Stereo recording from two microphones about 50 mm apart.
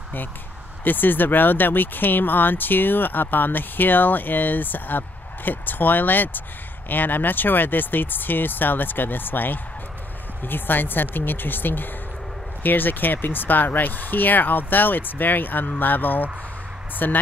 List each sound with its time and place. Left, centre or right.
0.8 s speech: left